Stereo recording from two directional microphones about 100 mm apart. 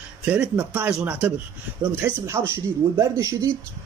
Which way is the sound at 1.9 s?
25° right (ahead or behind).